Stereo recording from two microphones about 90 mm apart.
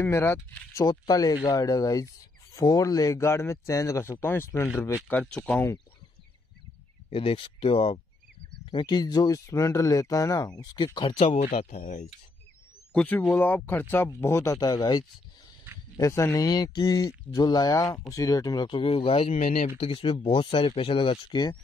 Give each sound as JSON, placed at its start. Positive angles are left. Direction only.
{"t": 0.0, "sound": "speech", "side_deg": 30}
{"t": 0.8, "sound": "speech", "side_deg": 45}
{"t": 5.2, "sound": "speech", "side_deg": 10}
{"t": 7.1, "sound": "speech", "side_deg": 90}
{"t": 8.5, "sound": "speech", "side_deg": 65}
{"t": 12.9, "sound": "speech", "side_deg": 15}
{"t": 16.0, "sound": "speech", "side_deg": 35}
{"t": 16.4, "sound": "speech", "side_deg": 50}
{"t": 18.7, "sound": "speech", "side_deg": 90}